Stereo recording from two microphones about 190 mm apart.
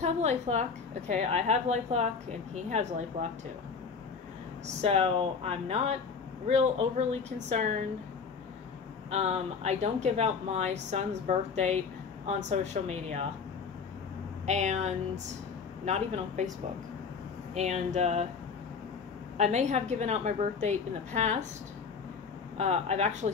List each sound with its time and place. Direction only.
0.0 s speech: 35° right (ahead or behind)
4.8 s speech: 30° right (ahead or behind)
9.1 s speech: 35° right (ahead or behind)
14.4 s speech: 35° right (ahead or behind)
17.6 s speech: 35° right (ahead or behind)
19.3 s speech: 35° right (ahead or behind)
22.6 s speech: 35° right (ahead or behind)